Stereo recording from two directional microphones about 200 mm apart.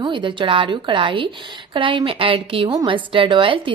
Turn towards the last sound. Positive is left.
turn(degrees=-25)  # may be behind; listen again after turning